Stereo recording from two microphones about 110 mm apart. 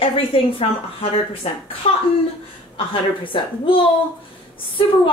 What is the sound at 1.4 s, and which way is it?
Speech, 70° left (ahead or behind).